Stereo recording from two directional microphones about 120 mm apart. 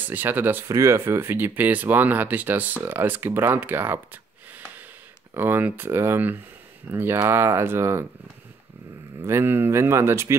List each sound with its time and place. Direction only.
0.1 s speech: 15° right (ahead or behind)
9.2 s speech: 20° right (ahead or behind)